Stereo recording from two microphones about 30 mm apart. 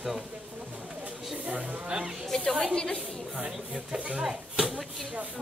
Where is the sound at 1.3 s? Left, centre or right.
Right.